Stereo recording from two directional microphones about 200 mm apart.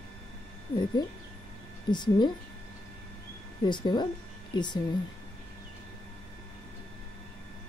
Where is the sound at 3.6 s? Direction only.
20° left (ahead or behind).